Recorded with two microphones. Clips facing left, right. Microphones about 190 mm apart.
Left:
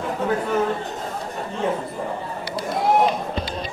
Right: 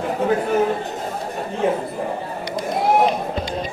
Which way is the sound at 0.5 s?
10° right (ahead or behind).